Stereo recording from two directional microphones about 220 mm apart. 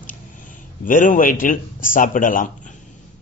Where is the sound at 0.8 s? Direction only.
40° left (ahead or behind).